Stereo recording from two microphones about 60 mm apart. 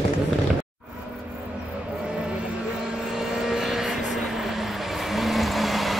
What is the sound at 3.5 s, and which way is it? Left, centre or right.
Vehicle, centre.